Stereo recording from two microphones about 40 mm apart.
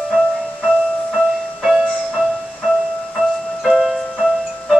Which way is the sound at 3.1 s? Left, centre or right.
Centre.